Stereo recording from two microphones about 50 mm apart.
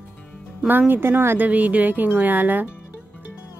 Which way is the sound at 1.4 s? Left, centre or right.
Right.